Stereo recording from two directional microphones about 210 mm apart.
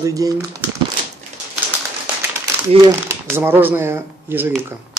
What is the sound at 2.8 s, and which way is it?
Speech, 10° right (ahead or behind).